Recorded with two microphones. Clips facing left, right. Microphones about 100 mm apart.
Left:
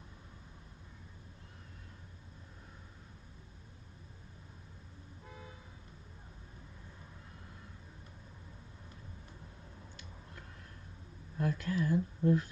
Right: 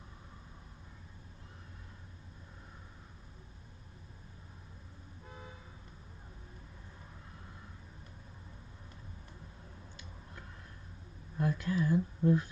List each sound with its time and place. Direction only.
11.3 s speech: 20° right (ahead or behind)